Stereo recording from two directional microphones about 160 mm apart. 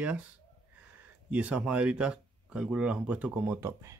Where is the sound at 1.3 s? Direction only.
10° right (ahead or behind).